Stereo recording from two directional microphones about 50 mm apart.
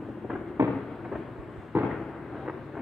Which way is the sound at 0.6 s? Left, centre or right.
Right.